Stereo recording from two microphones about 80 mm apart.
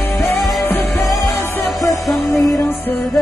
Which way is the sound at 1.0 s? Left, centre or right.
Left.